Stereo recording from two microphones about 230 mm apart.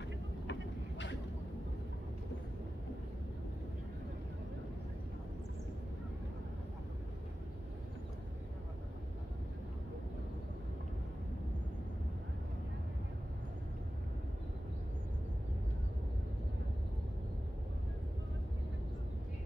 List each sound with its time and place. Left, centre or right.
0.5 s vehicle: left